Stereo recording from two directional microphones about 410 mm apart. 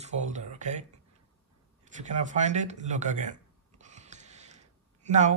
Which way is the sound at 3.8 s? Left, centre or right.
Centre.